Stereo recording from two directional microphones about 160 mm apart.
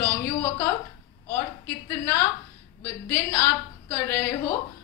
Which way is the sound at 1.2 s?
15° left (ahead or behind).